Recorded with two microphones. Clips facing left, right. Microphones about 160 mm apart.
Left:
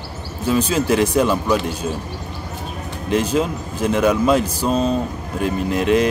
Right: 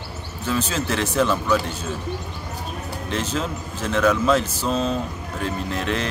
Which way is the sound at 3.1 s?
10° left (ahead or behind).